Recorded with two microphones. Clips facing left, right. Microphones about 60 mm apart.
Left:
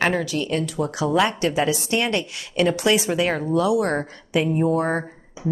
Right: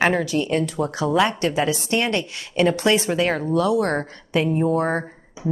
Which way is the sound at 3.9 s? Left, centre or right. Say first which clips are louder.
Even; centre.